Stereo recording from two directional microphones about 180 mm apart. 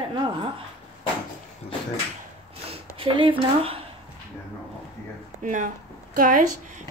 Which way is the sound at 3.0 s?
30° right (ahead or behind).